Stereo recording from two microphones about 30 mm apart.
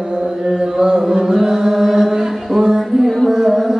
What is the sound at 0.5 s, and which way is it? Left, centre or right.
Chant, right.